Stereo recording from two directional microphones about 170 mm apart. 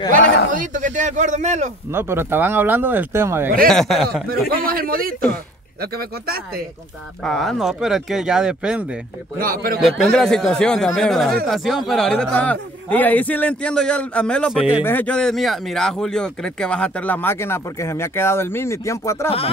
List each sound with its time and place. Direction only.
0.2 s a man's voice: 90° left
0.5 s a man's voice: 50° right (ahead or behind)
1.9 s speech: 15° right (ahead or behind)
3.6 s speech: centre (ahead or behind)
4.6 s speech: 60° right (ahead or behind)
7.2 s speech: centre (ahead or behind)
9.4 s speech: 55° right (ahead or behind)
9.8 s speech: centre (ahead or behind)
14.5 s speech: 5° right (ahead or behind)
14.9 s speech: 10° left (ahead or behind)